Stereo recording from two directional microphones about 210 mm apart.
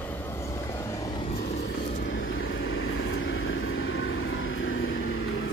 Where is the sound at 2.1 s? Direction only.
65° left (ahead or behind).